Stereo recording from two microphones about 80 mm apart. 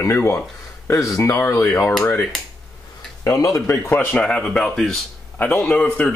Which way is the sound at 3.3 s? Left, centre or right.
Left.